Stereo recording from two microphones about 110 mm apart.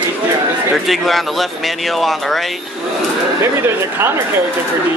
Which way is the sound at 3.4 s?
25° right (ahead or behind).